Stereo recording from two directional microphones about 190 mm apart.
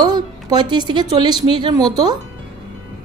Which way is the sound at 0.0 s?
20° right (ahead or behind).